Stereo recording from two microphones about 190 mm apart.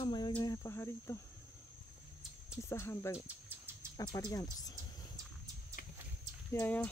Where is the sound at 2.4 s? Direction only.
15° left (ahead or behind).